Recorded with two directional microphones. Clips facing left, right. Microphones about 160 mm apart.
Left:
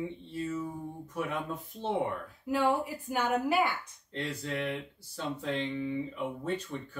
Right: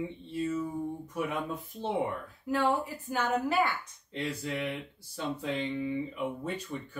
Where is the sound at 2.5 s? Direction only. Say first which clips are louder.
Even; 10° left (ahead or behind).